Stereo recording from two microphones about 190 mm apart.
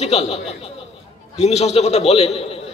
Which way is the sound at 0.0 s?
35° left (ahead or behind).